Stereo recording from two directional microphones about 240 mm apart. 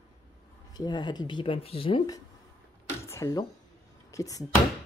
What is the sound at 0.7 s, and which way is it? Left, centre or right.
Speech, centre.